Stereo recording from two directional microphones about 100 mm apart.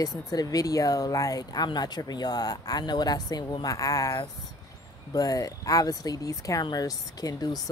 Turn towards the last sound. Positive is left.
turn(degrees=40)  # may be behind; listen again after turning